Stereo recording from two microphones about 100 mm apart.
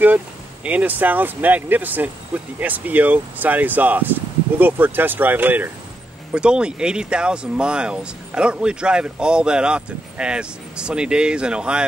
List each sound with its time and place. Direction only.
0.7 s speech: 15° right (ahead or behind)